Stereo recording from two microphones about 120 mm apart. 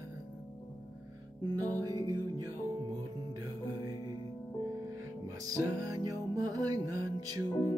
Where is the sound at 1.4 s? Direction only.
30° right (ahead or behind).